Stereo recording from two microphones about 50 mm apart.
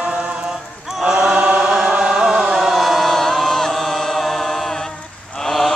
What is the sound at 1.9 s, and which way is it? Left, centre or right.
Chant, centre.